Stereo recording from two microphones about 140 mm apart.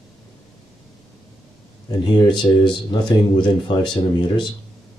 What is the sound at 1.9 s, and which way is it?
Speech, 35° left (ahead or behind).